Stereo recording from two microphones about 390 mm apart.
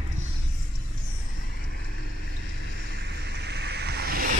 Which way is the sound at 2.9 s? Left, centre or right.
Right.